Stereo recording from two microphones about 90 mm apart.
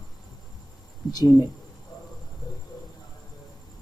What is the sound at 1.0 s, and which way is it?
Speech, 50° left (ahead or behind).